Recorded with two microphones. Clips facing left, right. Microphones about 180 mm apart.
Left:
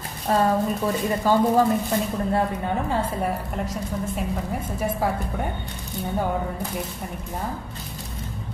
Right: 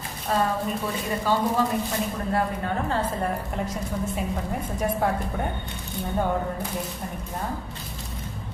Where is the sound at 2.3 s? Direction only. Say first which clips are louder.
Left 1 dB; 15° left (ahead or behind).